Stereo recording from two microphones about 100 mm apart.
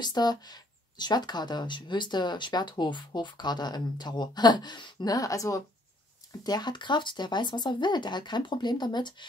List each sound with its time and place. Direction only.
0.0 s speech: 45° left (ahead or behind)
6.4 s speech: 45° left (ahead or behind)